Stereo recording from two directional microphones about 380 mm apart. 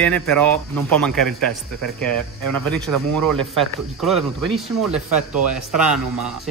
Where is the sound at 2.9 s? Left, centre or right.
Right.